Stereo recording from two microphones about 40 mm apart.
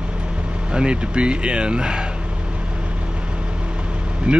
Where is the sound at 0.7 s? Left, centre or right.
Right.